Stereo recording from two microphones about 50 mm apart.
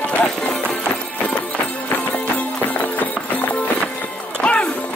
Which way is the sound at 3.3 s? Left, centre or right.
Left.